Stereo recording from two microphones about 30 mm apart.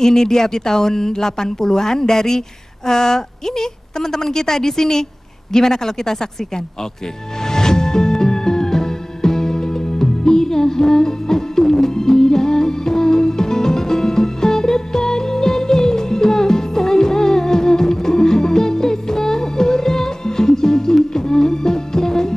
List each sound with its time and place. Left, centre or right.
0.0 s speech: centre
7.4 s music: centre